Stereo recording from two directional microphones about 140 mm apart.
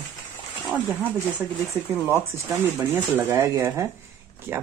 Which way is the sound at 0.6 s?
10° right (ahead or behind).